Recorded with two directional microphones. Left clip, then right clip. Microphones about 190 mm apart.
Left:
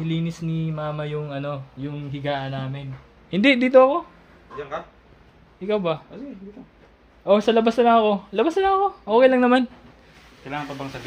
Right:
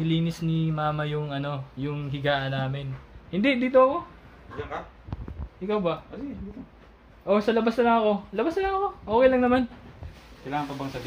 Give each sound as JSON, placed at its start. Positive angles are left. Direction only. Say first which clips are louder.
{"t": 0.0, "sound": "speech", "louder": "right 1 dB", "side_deg": 0}
{"t": 3.3, "sound": "speech", "louder": "left 6 dB", "side_deg": 50}
{"t": 5.6, "sound": "speech", "louder": "left 3 dB", "side_deg": 25}
{"t": 7.2, "sound": "speech", "louder": "left 5 dB", "side_deg": 50}